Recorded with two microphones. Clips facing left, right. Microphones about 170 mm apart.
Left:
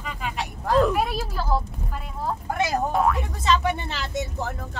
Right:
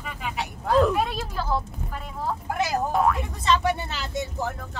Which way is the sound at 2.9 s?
Centre (ahead or behind).